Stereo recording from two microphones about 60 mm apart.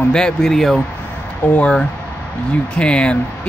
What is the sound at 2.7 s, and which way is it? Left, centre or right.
Speech, centre.